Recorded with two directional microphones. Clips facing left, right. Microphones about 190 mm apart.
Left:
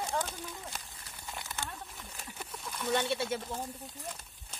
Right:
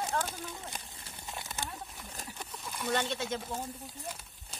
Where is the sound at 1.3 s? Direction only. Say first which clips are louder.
Right 1 dB; 20° right (ahead or behind).